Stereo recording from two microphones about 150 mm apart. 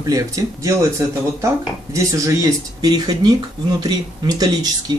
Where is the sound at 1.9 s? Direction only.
20° right (ahead or behind).